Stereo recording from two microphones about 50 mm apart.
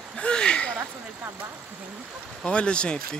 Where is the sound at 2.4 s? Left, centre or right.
Centre.